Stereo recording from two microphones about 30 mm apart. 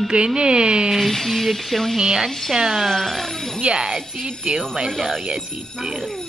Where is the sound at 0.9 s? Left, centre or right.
Centre.